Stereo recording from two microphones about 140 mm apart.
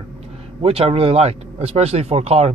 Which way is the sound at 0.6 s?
45° right (ahead or behind).